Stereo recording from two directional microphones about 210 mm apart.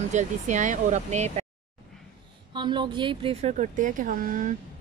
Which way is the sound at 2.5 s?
20° right (ahead or behind).